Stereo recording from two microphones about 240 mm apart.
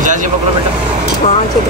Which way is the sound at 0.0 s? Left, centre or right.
Right.